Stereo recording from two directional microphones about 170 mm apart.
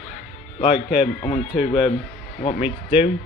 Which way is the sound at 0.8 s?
40° left (ahead or behind).